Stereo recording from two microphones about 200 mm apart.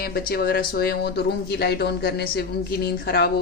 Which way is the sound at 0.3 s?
50° left (ahead or behind).